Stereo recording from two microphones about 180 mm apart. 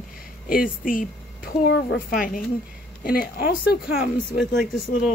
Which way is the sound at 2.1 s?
50° left (ahead or behind).